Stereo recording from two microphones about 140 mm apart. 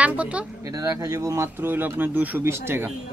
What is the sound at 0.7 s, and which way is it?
Speech, 25° right (ahead or behind).